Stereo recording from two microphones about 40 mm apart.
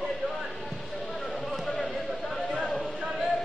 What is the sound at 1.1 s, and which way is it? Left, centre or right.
Basketball bounce, centre.